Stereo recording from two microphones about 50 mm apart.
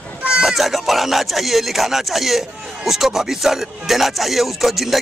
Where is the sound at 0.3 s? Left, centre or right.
Centre.